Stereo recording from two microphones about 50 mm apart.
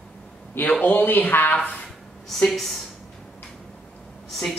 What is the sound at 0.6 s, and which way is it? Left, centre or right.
Speech, left.